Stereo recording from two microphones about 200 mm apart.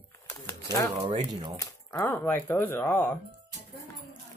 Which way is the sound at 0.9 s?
25° right (ahead or behind).